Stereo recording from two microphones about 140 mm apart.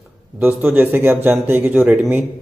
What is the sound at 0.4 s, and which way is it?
Speech, 15° right (ahead or behind).